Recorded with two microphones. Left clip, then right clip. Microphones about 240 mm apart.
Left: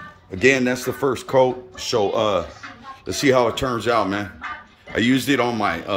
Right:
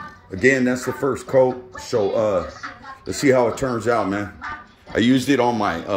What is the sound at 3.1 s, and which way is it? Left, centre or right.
Speech, centre.